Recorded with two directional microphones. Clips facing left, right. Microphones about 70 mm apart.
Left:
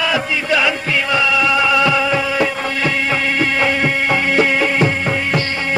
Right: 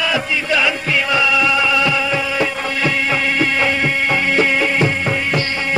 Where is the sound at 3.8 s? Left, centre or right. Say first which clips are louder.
Left 1 dB; left.